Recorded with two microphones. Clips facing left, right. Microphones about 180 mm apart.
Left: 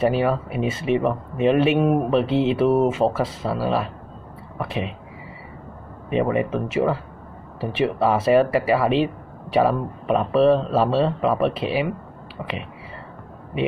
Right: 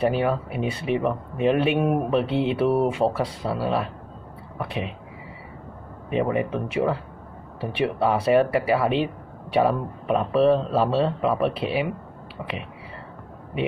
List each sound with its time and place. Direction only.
0.0 s speech: centre (ahead or behind)
6.0 s speech: centre (ahead or behind)